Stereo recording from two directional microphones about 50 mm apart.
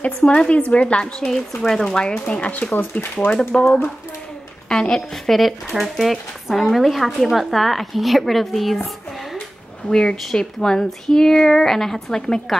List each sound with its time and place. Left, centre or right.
0.0 s a woman's voice: left
1.6 s speech: centre
2.4 s a woman's voice: left
2.7 s speech: left
3.6 s a woman's voice: left; by 8.8 s centre
9.8 s speech: centre